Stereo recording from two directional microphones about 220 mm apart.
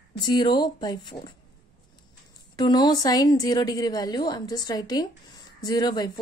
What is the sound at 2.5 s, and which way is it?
A woman's voice, 20° left (ahead or behind).